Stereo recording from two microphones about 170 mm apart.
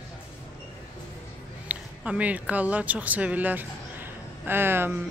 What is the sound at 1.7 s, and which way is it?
Speech, 5° right (ahead or behind).